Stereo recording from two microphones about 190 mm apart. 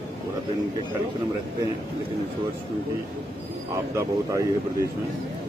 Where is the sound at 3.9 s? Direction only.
15° right (ahead or behind).